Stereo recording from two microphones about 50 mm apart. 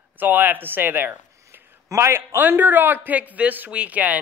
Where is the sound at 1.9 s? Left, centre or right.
Right.